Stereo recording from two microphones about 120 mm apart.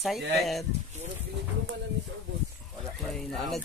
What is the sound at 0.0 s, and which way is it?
Speech, centre (ahead or behind).